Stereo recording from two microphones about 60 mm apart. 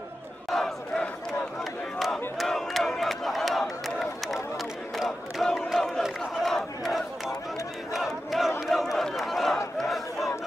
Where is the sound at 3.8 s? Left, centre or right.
Centre.